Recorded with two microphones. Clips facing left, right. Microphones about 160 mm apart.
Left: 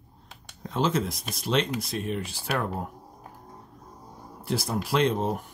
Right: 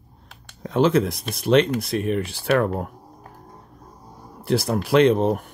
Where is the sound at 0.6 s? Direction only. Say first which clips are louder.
Right 8 dB; 65° right (ahead or behind).